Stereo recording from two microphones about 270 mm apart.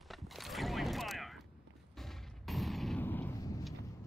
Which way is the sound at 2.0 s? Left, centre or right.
Centre.